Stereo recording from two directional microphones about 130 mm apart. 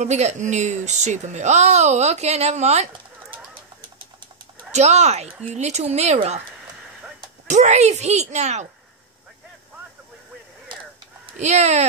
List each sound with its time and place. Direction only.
0.0 s speech: 60° right (ahead or behind)
4.7 s speech: 60° right (ahead or behind)
7.4 s speech: 65° right (ahead or behind)
11.3 s speech: 60° right (ahead or behind)